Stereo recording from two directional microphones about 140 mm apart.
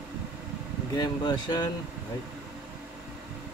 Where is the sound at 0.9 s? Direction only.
30° left (ahead or behind).